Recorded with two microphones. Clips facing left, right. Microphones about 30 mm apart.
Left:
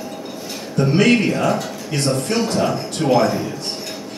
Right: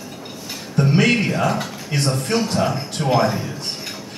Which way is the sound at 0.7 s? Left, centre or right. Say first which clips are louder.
Left 2 dB; centre.